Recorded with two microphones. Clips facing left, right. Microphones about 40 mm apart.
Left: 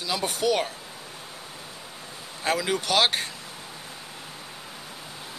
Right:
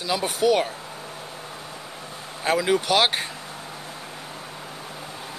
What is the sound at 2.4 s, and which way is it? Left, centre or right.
Speech, centre.